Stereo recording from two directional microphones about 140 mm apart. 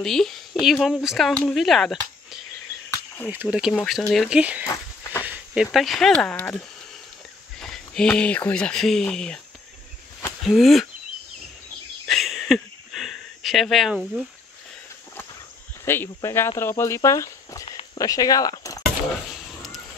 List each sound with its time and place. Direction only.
0.0 s speech: 5° left (ahead or behind)
3.3 s speech: 10° right (ahead or behind)
3.7 s speech: 5° left (ahead or behind)
4.4 s speech: 10° right (ahead or behind)
4.6 s a sound: 20° left (ahead or behind)
5.2 s speech: 10° right (ahead or behind); by 9.4 s 5° left (ahead or behind)
10.4 s speech: centre (ahead or behind)
12.1 s a sound: centre (ahead or behind)
15.8 s speech: 20° left (ahead or behind)
18.9 s a sound: centre (ahead or behind)